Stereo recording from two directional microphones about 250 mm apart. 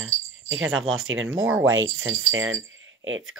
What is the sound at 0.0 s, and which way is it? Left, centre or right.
Speech, right.